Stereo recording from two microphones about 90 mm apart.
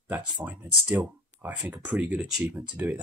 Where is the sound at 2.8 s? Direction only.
25° right (ahead or behind).